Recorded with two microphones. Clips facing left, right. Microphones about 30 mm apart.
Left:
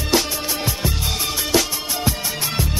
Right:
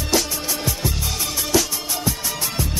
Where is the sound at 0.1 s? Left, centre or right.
Left.